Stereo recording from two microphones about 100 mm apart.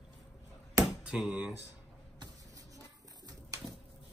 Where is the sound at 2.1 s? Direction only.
35° right (ahead or behind).